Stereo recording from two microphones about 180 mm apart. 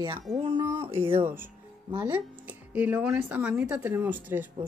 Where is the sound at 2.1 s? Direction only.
10° right (ahead or behind).